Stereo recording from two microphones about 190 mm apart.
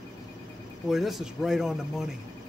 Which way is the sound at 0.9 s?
Centre (ahead or behind).